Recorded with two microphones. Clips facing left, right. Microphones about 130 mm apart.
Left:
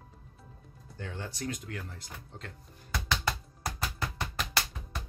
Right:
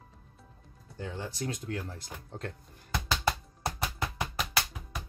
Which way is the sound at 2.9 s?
25° right (ahead or behind).